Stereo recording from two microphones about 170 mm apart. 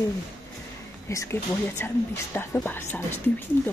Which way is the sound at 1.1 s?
20° left (ahead or behind).